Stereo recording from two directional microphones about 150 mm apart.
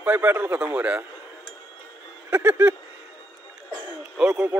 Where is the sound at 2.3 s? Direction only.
15° right (ahead or behind).